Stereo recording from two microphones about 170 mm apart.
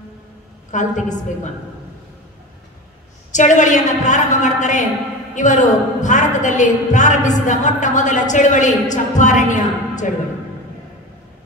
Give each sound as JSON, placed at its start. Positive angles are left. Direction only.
{"t": 0.7, "sound": "a woman's voice", "side_deg": 45}
{"t": 3.3, "sound": "a woman's voice", "side_deg": 45}